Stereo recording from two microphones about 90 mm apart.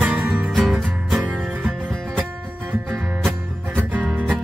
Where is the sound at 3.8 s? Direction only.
15° right (ahead or behind).